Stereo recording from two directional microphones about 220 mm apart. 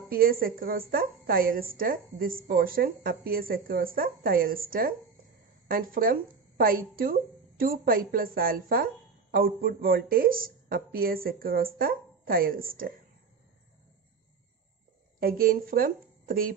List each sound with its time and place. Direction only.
0.1 s a woman's voice: 40° right (ahead or behind)
15.1 s a woman's voice: 40° right (ahead or behind)